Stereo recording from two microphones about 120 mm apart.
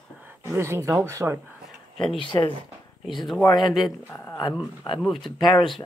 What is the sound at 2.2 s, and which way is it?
Speech, 40° left (ahead or behind).